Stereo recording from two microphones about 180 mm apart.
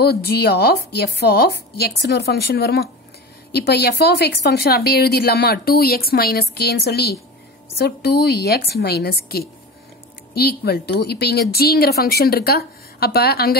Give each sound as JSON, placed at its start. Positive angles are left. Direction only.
{"t": 0.0, "sound": "a woman's voice", "side_deg": 60}